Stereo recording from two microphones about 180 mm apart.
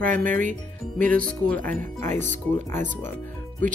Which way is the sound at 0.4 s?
50° right (ahead or behind).